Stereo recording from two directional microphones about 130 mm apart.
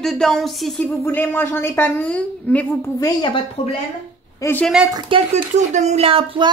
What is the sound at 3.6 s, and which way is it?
Speech, 50° left (ahead or behind).